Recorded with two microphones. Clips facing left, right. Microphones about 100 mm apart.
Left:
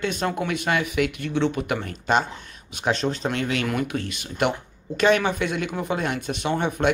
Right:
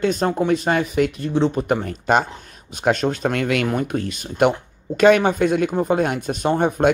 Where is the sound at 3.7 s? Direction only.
40° right (ahead or behind).